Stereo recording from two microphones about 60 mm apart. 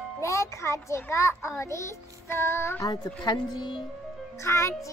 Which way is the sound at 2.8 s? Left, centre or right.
Left.